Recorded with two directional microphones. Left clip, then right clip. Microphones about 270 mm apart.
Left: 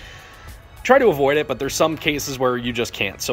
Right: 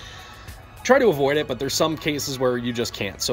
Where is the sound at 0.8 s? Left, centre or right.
Centre.